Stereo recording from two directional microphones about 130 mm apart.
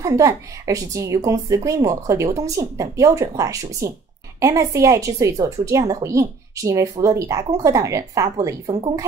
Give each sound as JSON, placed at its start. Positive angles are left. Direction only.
{"t": 0.0, "sound": "speech", "side_deg": -25}